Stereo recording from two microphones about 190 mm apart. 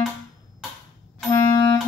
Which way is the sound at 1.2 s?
20° left (ahead or behind).